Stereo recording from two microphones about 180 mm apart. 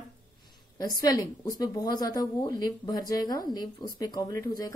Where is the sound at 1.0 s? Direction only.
20° left (ahead or behind).